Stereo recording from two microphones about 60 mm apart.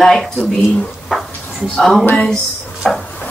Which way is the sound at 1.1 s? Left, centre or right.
Centre.